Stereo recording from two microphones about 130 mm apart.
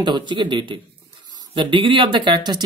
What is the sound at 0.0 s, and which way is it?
Speech, 35° right (ahead or behind).